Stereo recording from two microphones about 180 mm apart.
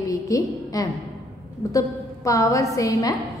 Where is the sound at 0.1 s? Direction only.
20° left (ahead or behind).